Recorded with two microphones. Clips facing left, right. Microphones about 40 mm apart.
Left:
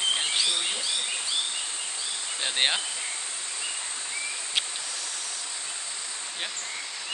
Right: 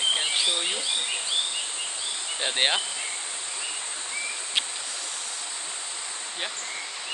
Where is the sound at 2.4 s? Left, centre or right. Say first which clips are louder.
Right 1 dB; centre.